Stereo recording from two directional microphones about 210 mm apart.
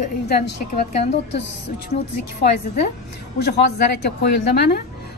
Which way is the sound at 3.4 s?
50° left (ahead or behind).